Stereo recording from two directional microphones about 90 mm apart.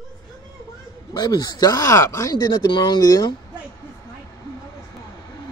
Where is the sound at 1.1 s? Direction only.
50° left (ahead or behind).